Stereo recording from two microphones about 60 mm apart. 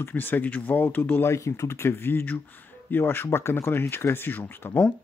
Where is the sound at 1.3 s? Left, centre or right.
Left.